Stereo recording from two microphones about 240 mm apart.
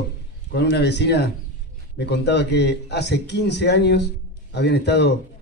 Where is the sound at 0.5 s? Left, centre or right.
Left.